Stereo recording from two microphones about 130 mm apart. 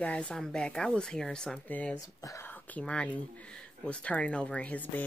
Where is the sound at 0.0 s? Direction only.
10° left (ahead or behind).